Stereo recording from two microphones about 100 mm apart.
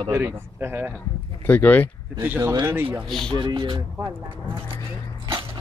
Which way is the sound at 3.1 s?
5° left (ahead or behind).